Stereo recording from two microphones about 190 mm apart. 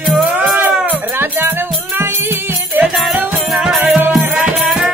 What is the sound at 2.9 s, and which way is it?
Music, centre (ahead or behind).